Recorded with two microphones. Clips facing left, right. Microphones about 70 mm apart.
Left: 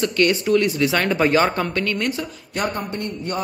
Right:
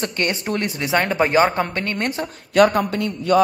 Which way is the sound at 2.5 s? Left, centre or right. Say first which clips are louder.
Right 11 dB; right.